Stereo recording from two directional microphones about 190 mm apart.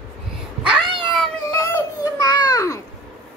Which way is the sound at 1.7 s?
20° left (ahead or behind).